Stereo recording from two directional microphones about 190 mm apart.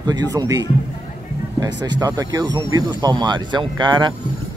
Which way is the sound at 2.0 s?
20° right (ahead or behind).